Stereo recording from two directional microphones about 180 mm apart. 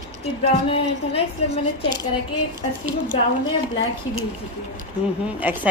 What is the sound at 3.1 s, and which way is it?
Speech, 30° left (ahead or behind).